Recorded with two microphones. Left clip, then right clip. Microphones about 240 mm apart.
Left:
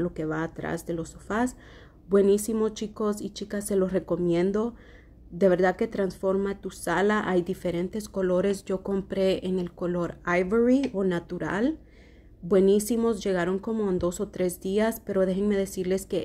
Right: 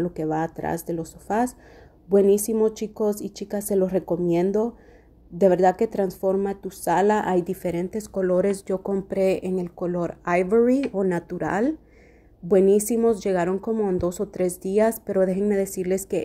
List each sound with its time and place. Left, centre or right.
0.0 s a woman's voice: centre